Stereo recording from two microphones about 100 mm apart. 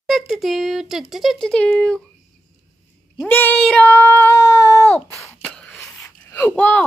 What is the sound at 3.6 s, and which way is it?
Female singing, 10° left (ahead or behind).